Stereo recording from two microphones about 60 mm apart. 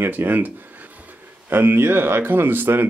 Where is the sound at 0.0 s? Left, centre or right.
Right.